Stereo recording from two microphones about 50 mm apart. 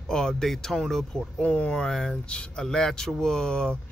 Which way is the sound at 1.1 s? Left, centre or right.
Left.